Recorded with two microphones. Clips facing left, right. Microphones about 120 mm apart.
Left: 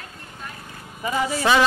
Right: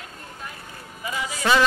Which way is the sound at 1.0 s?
45° left (ahead or behind).